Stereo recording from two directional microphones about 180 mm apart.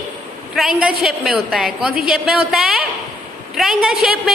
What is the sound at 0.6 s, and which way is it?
A woman's voice, 5° right (ahead or behind).